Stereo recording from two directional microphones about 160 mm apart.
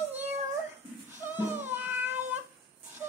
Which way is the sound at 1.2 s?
15° right (ahead or behind).